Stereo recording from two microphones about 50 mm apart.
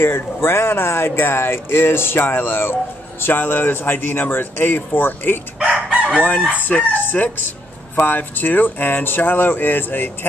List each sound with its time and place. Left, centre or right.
0.0 s speech: left
5.9 s crowing: centre
6.7 s speech: left